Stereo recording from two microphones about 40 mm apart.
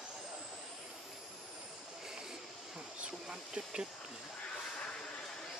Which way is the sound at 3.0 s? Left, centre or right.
Right.